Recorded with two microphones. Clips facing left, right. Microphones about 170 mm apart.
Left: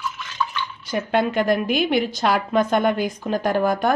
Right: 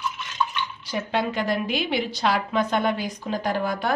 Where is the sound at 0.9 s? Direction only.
55° left (ahead or behind).